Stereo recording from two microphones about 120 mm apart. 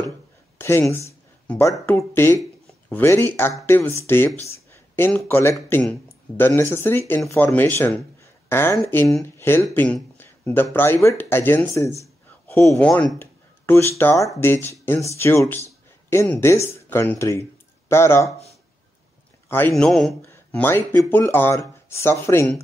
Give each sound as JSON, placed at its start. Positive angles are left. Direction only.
{"t": 0.6, "sound": "speech", "side_deg": 20}
{"t": 4.5, "sound": "a sound", "side_deg": 20}
{"t": 5.1, "sound": "speech", "side_deg": 20}
{"t": 13.2, "sound": "speech", "side_deg": 20}
{"t": 19.7, "sound": "a man's voice", "side_deg": 0}
{"t": 20.5, "sound": "speech", "side_deg": 20}